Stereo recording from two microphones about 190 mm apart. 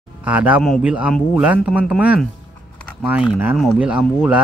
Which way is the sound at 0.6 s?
Centre (ahead or behind).